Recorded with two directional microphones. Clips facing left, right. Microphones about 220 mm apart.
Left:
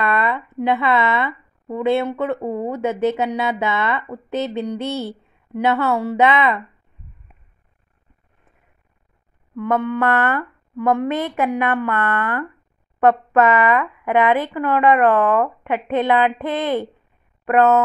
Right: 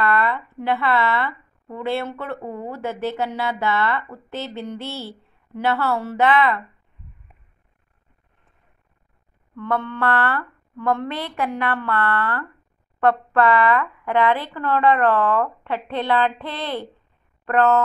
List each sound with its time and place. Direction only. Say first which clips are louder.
0.0 s speech: left 1 dB; 20° left (ahead or behind)
9.6 s a woman's voice: left 5 dB; 15° left (ahead or behind)